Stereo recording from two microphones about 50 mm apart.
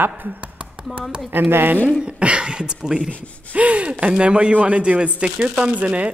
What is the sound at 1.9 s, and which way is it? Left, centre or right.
Speech, centre.